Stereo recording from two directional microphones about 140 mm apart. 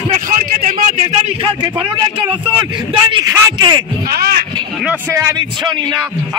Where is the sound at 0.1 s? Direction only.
80° right.